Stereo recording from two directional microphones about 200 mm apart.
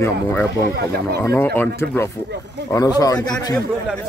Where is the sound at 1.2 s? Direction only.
10° left (ahead or behind).